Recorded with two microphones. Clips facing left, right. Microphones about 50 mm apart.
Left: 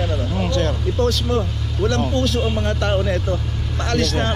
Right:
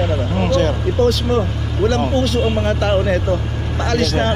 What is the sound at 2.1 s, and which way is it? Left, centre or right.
Speech, centre.